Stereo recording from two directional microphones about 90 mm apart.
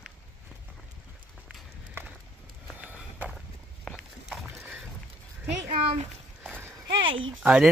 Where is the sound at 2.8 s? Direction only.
15° right (ahead or behind).